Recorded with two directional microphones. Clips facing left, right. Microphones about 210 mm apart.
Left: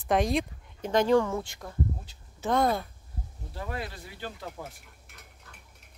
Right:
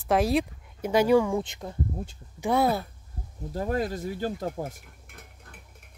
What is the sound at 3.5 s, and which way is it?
Speech, 40° right (ahead or behind).